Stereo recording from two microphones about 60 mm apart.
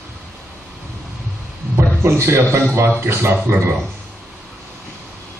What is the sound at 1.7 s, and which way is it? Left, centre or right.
A man's voice, right.